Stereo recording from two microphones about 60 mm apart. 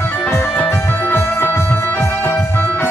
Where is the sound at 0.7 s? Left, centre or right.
Left.